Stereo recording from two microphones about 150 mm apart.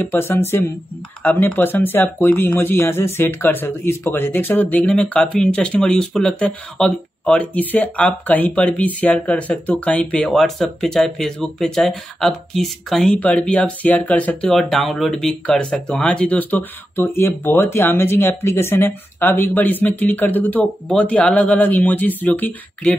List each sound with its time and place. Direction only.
0.0 s speech: 15° left (ahead or behind)